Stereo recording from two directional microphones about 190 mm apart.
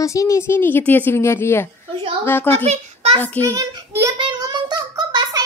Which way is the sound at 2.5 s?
30° right (ahead or behind).